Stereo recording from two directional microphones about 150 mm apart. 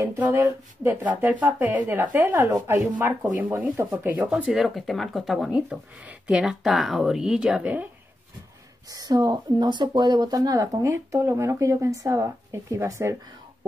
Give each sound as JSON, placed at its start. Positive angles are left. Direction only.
{"t": 0.0, "sound": "speech", "side_deg": -15}
{"t": 8.9, "sound": "speech", "side_deg": -25}